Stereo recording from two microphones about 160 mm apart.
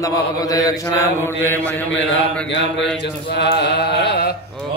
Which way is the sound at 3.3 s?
90° left.